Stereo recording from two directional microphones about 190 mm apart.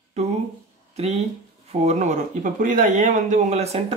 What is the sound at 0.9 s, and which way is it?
Speech, 35° right (ahead or behind).